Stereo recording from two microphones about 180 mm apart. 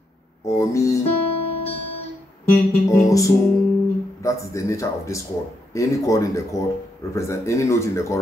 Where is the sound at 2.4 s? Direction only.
15° left (ahead or behind).